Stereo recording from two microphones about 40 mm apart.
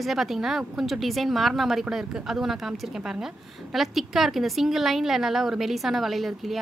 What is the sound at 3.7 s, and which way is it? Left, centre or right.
A woman's voice, centre.